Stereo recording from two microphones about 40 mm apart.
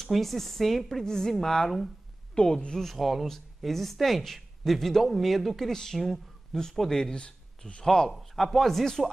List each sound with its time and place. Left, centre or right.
0.0 s speech: centre
2.3 s speech: left
2.8 s speech: centre
5.7 s speech: centre
5.9 s speech: centre
7.0 s speech: left
7.8 s speech: centre